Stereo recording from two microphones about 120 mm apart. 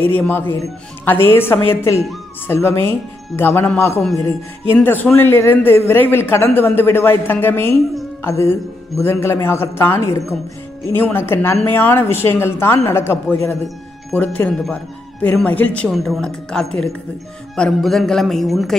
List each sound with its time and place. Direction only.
0.0 s speech: 15° left (ahead or behind)
15.9 s a man's voice: centre (ahead or behind)